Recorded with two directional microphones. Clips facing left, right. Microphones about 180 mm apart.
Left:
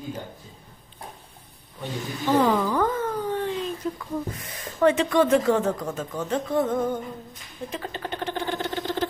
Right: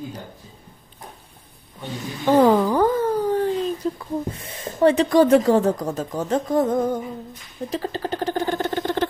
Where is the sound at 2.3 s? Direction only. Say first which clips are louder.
Right 5 dB; 50° right (ahead or behind).